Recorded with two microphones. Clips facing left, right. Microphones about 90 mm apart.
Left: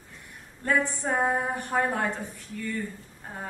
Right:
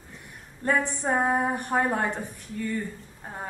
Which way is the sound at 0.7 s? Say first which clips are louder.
Right 1 dB; 20° right (ahead or behind).